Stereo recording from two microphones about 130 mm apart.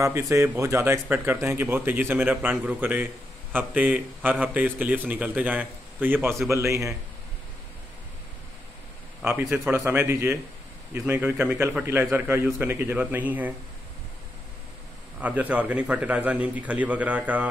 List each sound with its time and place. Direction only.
0.0 s a man's voice: 25° right (ahead or behind)
9.4 s speech: 20° right (ahead or behind)
15.1 s speech: 10° right (ahead or behind)